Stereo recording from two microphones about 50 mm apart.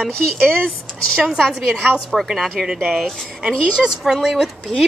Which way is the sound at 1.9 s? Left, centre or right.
Centre.